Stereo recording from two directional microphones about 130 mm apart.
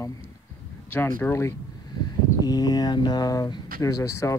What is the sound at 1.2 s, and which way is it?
Speech, 20° left (ahead or behind).